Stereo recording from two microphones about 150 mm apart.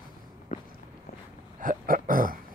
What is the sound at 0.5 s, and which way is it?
Walk, 55° left (ahead or behind).